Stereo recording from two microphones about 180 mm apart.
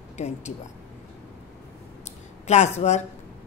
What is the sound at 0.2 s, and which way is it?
Speech, 40° left (ahead or behind).